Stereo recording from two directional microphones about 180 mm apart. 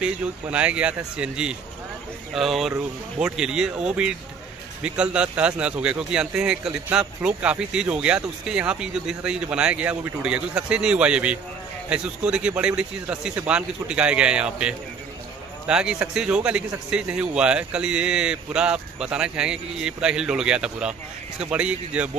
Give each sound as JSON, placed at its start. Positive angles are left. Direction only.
{"t": 0.0, "sound": "speech", "side_deg": -5}